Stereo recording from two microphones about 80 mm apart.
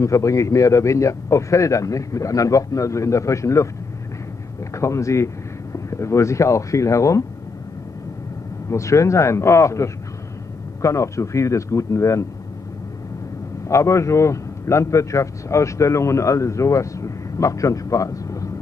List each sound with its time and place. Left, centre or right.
0.0 s a man's voice: left
4.7 s speech: left
8.6 s a man's voice: left
13.7 s a man's voice: left